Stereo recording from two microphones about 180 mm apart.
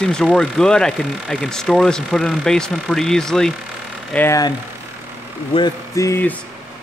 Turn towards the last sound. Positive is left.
turn(degrees=15)  # may be behind; listen again after turning